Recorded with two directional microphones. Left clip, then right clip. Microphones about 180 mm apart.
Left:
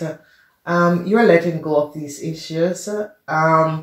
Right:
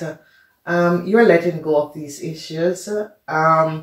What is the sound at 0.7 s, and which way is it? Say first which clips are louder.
Speech: right 1 dB; 45° left (ahead or behind).